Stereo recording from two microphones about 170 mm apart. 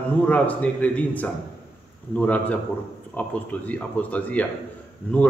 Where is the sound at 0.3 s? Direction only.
10° left (ahead or behind).